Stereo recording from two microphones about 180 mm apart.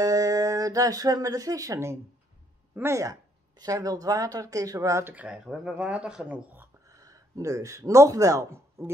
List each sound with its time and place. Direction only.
0.0 s speech: 20° right (ahead or behind)